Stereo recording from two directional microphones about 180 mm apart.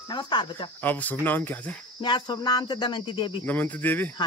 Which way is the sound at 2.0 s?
25° left (ahead or behind).